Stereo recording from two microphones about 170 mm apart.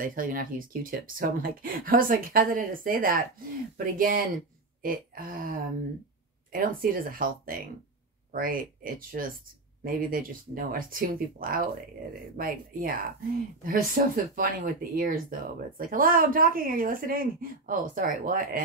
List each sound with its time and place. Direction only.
0.0 s speech: 55° right (ahead or behind)